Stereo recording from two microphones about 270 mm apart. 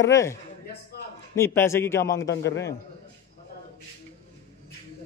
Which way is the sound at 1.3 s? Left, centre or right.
Centre.